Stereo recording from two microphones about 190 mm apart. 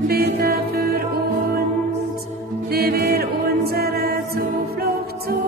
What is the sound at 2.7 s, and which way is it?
Music, 55° right (ahead or behind).